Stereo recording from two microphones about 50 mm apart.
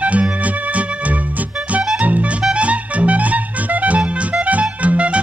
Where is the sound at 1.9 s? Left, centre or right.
Right.